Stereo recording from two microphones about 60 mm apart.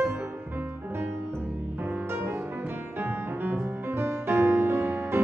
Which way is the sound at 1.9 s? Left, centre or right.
Right.